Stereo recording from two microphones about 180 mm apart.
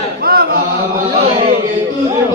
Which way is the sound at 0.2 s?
55° right (ahead or behind).